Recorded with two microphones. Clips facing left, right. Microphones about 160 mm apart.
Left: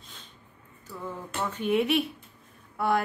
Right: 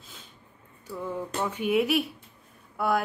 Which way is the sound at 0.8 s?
10° right (ahead or behind).